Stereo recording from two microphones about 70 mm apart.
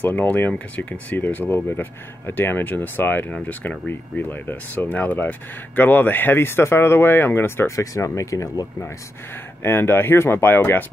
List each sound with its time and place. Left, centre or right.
0.0 s speech: left
9.6 s speech: left